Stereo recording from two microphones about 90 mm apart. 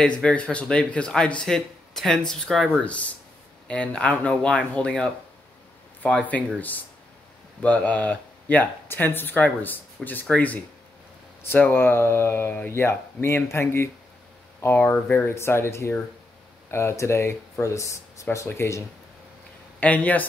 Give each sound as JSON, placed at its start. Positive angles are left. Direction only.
{"t": 0.2, "sound": "a man's voice", "side_deg": 10}
{"t": 19.8, "sound": "a man's voice", "side_deg": 15}